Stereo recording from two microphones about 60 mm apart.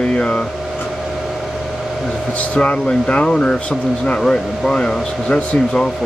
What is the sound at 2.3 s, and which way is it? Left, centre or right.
Speech, left.